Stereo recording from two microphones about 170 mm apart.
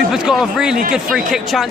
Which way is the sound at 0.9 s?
Centre (ahead or behind).